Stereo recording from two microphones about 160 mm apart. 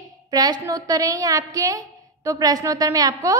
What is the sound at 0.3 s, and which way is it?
A woman's voice, 25° right (ahead or behind).